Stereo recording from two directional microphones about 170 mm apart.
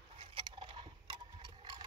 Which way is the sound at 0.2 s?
30° right (ahead or behind).